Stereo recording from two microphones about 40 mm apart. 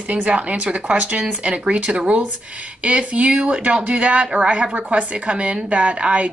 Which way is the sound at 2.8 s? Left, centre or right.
Right.